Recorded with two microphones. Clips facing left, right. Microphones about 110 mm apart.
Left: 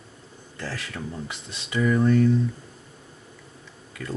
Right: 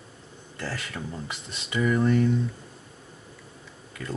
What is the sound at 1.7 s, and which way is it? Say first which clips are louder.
Speech: left 2 dB; 15° right (ahead or behind).